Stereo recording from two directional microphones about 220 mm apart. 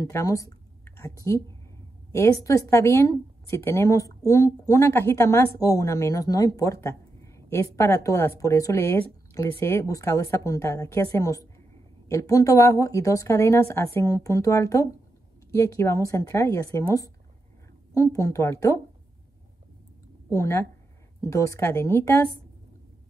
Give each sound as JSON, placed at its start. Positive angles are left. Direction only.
{"t": 0.0, "sound": "a woman's voice", "side_deg": 15}
{"t": 20.3, "sound": "speech", "side_deg": 15}